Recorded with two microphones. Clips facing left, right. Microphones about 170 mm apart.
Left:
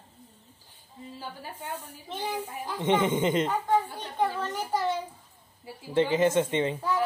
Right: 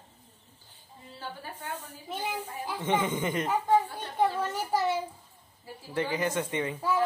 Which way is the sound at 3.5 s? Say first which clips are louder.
Right 1 dB; 10° right (ahead or behind).